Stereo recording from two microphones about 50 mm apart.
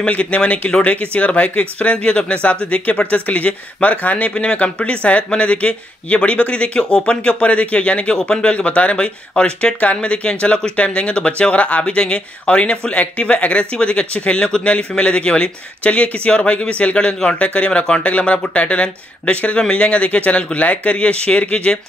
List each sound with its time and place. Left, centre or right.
0.0 s speech: left